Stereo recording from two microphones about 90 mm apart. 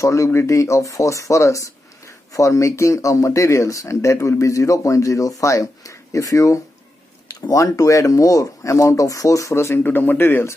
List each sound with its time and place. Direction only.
0.0 s speech: 35° left (ahead or behind)